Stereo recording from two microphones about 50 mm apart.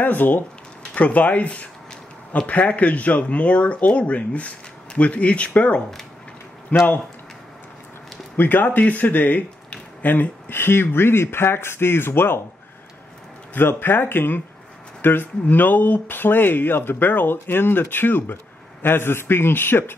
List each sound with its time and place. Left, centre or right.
0.0 s speech: left
8.4 s speech: left
13.6 s speech: left